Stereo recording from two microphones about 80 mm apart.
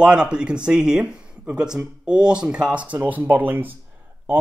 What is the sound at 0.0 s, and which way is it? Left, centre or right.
Speech, centre.